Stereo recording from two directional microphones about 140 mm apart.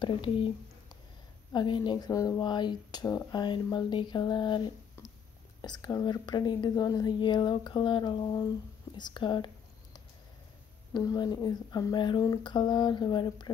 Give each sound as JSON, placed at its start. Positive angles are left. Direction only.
{"t": 0.0, "sound": "speech", "side_deg": 35}
{"t": 1.5, "sound": "speech", "side_deg": 35}
{"t": 10.9, "sound": "speech", "side_deg": 25}